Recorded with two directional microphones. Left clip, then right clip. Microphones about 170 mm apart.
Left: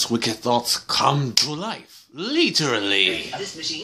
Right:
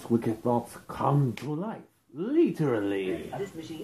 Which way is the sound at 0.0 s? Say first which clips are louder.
Left 6 dB; 20° left (ahead or behind).